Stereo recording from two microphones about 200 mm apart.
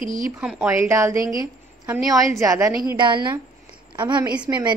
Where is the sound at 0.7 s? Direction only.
15° right (ahead or behind).